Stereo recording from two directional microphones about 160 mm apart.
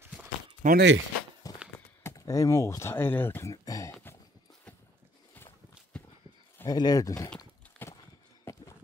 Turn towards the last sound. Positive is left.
turn(degrees=15)  # may be behind; listen again after turning